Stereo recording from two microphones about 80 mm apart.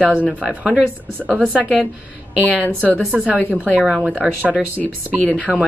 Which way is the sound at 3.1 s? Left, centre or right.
Centre.